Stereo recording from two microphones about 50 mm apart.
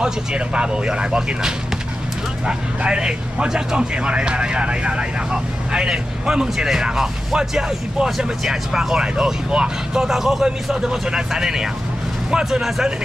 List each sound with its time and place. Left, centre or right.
0.0 s speech: centre